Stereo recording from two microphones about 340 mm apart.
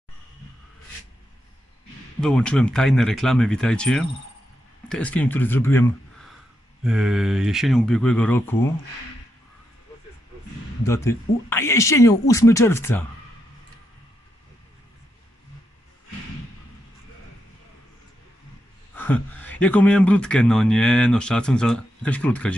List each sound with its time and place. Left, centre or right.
2.1 s speech: centre
10.9 s speech: centre
18.9 s speech: centre